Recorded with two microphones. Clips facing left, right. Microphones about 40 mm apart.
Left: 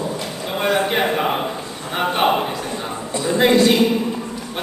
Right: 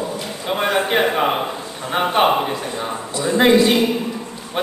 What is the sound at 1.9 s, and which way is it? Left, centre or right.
Speech, centre.